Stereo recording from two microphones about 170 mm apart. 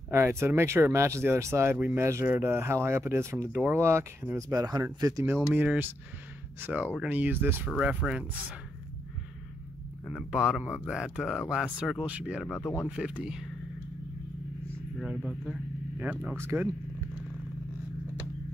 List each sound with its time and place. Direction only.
0.1 s speech: 15° right (ahead or behind)
10.0 s speech: centre (ahead or behind)
12.4 s speech: 10° left (ahead or behind)
12.8 s speech: 5° right (ahead or behind)
15.0 s speech: 5° right (ahead or behind)